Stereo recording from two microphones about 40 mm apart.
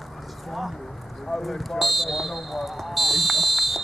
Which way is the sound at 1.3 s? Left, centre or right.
Centre.